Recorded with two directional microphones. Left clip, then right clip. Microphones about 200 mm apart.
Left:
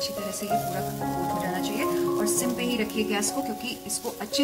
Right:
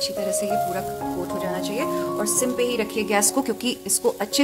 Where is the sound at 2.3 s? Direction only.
55° right (ahead or behind).